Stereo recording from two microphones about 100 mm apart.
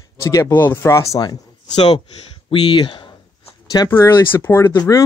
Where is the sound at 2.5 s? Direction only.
55° left (ahead or behind).